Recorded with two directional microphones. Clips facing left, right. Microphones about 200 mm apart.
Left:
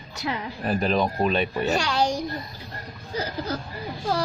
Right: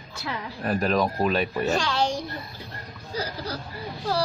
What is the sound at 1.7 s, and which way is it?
Speech, 15° left (ahead or behind).